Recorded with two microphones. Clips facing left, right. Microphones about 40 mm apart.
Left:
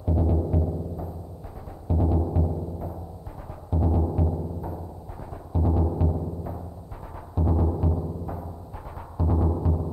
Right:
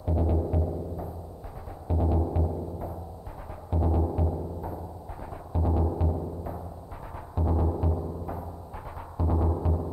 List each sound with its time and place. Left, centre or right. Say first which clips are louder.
0.0 s music: left 2 dB; centre